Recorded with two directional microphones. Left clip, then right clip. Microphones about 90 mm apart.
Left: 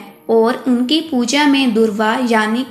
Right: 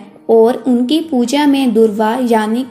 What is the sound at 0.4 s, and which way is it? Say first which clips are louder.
A woman's voice: right 3 dB; 35° right (ahead or behind).